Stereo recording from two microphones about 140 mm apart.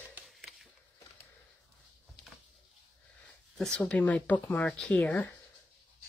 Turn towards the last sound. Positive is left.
turn(degrees=10)  # may be behind; listen again after turning